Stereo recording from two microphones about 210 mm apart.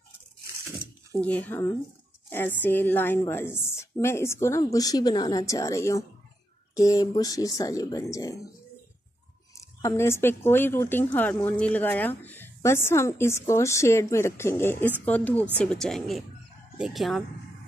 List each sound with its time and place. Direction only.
1.2 s speech: 10° left (ahead or behind)
9.8 s speech: 15° left (ahead or behind)